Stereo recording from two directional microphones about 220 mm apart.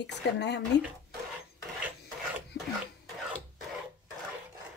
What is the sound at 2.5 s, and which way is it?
Filing, 50° left (ahead or behind).